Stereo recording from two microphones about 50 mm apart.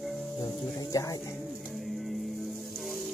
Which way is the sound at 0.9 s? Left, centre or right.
Left.